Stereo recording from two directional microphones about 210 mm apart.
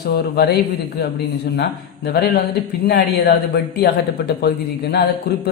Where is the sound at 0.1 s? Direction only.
50° left (ahead or behind).